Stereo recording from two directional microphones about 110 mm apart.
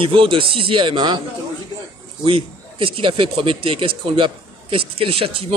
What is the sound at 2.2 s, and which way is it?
Speech, 55° right (ahead or behind).